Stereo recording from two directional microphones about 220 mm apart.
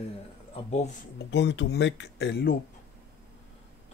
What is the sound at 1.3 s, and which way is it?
Speech, 50° left (ahead or behind).